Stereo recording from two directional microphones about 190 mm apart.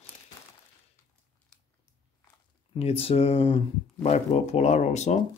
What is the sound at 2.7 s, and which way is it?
Speech, 30° left (ahead or behind).